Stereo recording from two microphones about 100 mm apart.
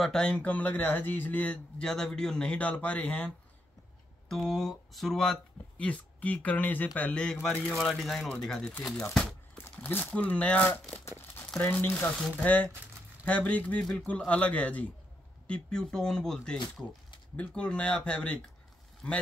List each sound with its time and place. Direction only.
0.0 s speech: 5° left (ahead or behind)
4.3 s speech: centre (ahead or behind)
7.6 s speech: centre (ahead or behind)
9.1 s crumpling: 10° left (ahead or behind)
9.8 s speech: 15° left (ahead or behind)